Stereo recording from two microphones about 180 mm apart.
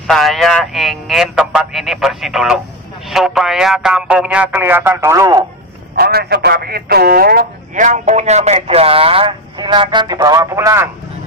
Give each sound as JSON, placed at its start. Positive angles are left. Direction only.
{"t": 0.0, "sound": "speech", "side_deg": 0}
{"t": 5.9, "sound": "a man's voice", "side_deg": -60}